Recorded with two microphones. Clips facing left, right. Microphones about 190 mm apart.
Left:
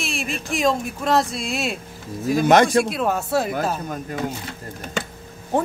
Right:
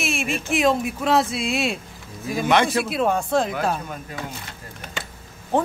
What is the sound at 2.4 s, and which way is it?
Speech, 40° left (ahead or behind).